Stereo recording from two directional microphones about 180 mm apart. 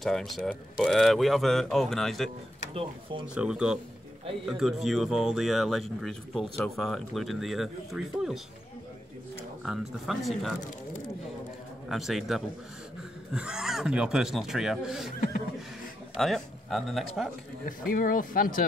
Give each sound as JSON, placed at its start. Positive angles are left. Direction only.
{"t": 0.0, "sound": "speech", "side_deg": 0}
{"t": 2.7, "sound": "speech", "side_deg": -30}
{"t": 3.3, "sound": "speech", "side_deg": -5}
{"t": 9.7, "sound": "speech", "side_deg": 0}
{"t": 11.9, "sound": "speech", "side_deg": 0}
{"t": 16.2, "sound": "speech", "side_deg": 0}
{"t": 17.6, "sound": "speech", "side_deg": 50}